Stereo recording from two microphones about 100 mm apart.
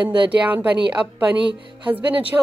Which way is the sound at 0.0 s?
50° right (ahead or behind).